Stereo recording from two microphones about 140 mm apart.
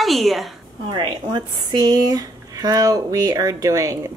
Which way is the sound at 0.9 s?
35° right (ahead or behind).